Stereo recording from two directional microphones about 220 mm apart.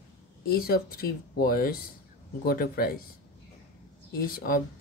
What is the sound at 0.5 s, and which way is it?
Speech, 45° left (ahead or behind).